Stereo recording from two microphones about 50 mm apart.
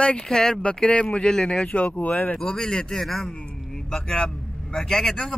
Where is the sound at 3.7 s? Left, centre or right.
Centre.